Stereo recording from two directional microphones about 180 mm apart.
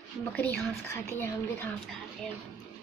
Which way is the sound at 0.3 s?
10° left (ahead or behind).